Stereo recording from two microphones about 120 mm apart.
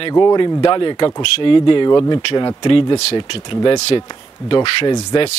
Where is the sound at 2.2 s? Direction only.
45° left (ahead or behind).